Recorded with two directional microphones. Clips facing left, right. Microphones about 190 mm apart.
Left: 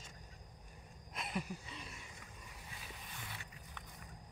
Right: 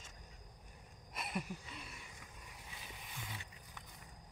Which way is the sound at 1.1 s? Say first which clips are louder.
Left 1 dB; 5° right (ahead or behind).